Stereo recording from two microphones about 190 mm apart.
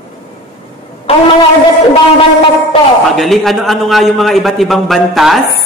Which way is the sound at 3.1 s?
Centre (ahead or behind).